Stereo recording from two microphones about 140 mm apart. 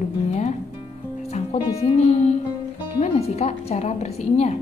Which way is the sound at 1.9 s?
50° left (ahead or behind).